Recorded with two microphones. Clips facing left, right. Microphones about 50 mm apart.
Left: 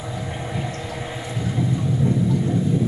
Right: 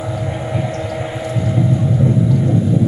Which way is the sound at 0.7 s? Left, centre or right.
Right.